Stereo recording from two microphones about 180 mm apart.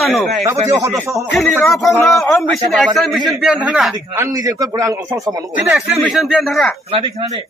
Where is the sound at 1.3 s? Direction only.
Centre (ahead or behind).